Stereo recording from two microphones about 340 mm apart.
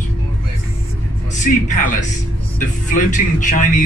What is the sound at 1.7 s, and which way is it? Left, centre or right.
A man's voice, left.